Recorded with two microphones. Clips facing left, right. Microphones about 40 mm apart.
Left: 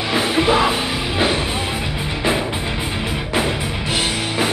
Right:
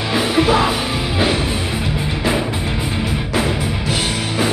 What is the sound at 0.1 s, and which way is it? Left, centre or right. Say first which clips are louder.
Music: right 1 dB; centre.